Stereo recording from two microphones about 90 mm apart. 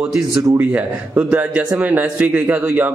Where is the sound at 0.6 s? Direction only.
20° right (ahead or behind).